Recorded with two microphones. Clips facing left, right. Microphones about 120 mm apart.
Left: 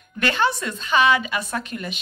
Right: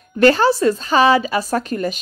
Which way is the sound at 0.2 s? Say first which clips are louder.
Right 10 dB; 35° right (ahead or behind).